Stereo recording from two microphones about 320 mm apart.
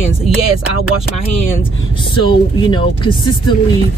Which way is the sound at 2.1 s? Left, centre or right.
Centre.